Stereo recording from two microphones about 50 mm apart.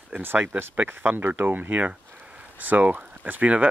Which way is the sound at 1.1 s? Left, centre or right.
Right.